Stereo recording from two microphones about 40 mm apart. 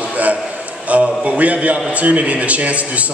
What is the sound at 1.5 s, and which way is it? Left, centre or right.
A man's voice, right.